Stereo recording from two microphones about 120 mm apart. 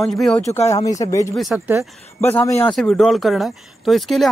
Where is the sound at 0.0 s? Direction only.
Centre (ahead or behind).